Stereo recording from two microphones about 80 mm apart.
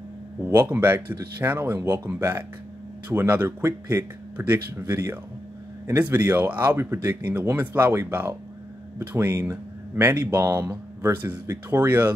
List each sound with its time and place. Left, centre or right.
0.5 s speech: right